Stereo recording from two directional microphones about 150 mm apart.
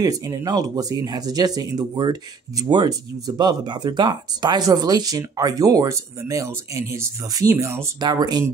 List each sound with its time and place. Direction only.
0.0 s speech: 20° right (ahead or behind)